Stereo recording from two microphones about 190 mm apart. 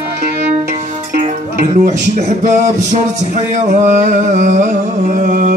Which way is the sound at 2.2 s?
40° right (ahead or behind).